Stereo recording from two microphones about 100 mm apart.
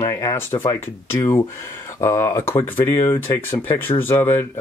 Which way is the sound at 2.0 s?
30° left (ahead or behind).